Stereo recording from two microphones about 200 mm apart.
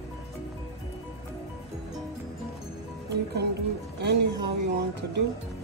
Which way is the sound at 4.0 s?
55° right (ahead or behind).